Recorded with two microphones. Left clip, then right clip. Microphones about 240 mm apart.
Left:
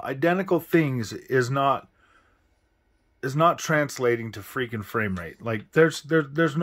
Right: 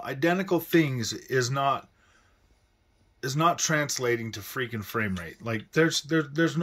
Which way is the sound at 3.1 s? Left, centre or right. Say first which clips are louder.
Left 3 dB; centre.